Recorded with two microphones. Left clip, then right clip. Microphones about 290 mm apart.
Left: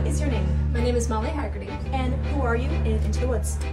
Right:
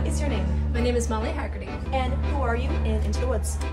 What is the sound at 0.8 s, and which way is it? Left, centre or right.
Speech, centre.